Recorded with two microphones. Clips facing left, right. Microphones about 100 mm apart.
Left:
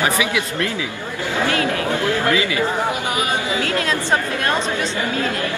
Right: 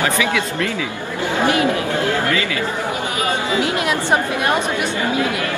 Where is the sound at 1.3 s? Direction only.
20° right (ahead or behind).